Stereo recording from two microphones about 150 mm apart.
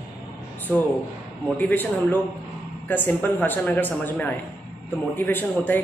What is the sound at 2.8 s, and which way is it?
Speech, 10° left (ahead or behind).